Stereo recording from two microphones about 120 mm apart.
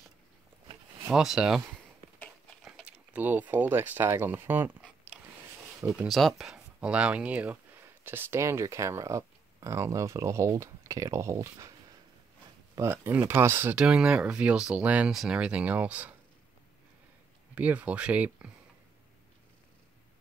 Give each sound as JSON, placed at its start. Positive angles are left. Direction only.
{"t": 1.1, "sound": "speech", "side_deg": -5}
{"t": 2.6, "sound": "speech", "side_deg": -10}
{"t": 6.0, "sound": "speech", "side_deg": 0}
{"t": 12.7, "sound": "speech", "side_deg": -20}
{"t": 17.6, "sound": "speech", "side_deg": -10}